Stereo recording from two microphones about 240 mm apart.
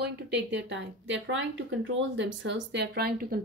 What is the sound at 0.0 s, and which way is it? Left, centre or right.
Speech, right.